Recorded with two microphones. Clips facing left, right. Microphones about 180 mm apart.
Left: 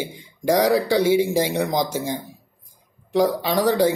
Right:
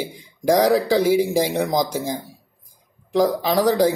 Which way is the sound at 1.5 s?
Centre (ahead or behind).